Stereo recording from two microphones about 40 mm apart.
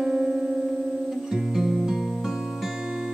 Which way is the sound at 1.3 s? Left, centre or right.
Centre.